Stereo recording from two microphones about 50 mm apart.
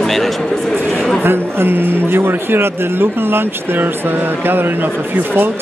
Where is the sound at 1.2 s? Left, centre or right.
Right.